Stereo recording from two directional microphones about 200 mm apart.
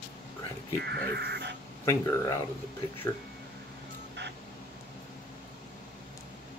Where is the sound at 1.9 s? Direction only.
15° left (ahead or behind).